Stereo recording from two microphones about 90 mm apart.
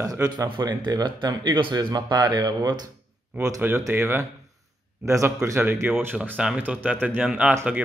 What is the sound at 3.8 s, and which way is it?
Speech, 30° right (ahead or behind).